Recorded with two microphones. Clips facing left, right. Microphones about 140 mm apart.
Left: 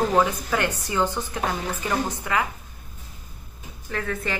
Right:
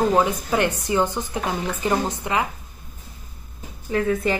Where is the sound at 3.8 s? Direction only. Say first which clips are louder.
Right 8 dB; 20° right (ahead or behind).